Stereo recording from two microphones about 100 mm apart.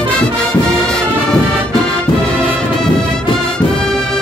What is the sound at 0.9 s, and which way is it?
Music, 10° left (ahead or behind).